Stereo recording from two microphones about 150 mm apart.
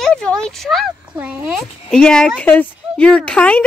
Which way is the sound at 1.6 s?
5° left (ahead or behind).